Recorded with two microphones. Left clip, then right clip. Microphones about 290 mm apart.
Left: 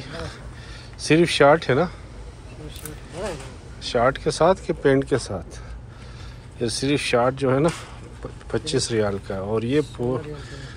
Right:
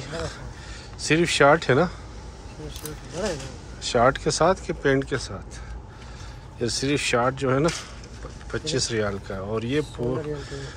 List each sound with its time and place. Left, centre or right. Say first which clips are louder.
1.1 s speech: left 2 dB; centre
3.9 s speech: even; centre
6.6 s speech: left 1 dB; centre